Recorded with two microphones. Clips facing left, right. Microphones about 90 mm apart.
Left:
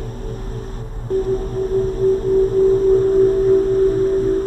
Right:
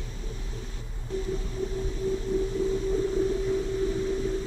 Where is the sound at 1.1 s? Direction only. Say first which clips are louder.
Left 13 dB; 50° left (ahead or behind).